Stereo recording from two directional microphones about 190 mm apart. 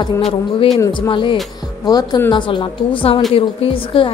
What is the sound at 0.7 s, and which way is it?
A woman's voice, 20° left (ahead or behind).